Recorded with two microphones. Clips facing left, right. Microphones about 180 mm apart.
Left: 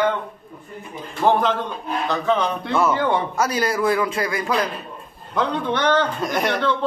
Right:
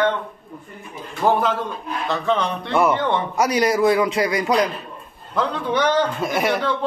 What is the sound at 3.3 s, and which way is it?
A man's voice, 15° right (ahead or behind).